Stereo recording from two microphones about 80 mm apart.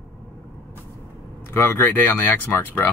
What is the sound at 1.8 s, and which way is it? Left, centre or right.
Speech, left.